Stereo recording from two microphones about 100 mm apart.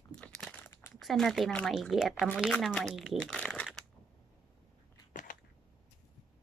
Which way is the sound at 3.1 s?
10° left (ahead or behind).